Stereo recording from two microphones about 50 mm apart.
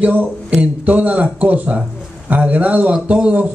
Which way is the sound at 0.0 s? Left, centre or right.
Right.